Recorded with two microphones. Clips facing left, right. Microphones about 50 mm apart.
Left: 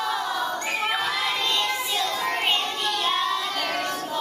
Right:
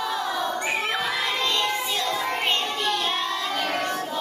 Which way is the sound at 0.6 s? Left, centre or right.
Centre.